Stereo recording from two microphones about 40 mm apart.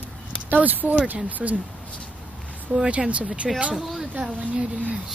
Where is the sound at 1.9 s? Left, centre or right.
Left.